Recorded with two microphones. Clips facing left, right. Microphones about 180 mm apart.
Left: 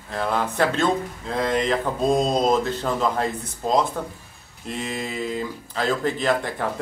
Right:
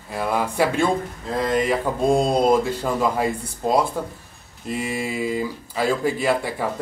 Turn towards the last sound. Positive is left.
turn(degrees=-10)  # may be behind; listen again after turning